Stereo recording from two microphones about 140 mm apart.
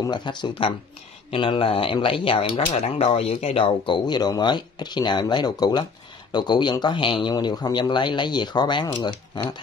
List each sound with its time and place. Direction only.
0.0 s speech: 30° left (ahead or behind)